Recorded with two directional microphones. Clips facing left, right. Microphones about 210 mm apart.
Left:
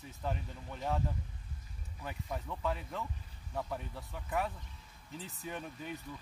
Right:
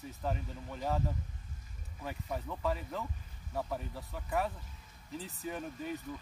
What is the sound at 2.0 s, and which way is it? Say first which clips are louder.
Speech: right 2 dB; centre (ahead or behind).